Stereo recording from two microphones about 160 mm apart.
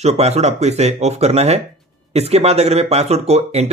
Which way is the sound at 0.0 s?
40° right (ahead or behind).